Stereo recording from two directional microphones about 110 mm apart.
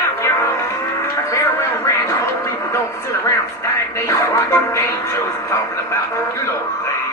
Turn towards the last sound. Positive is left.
turn(degrees=25)  # may be behind; listen again after turning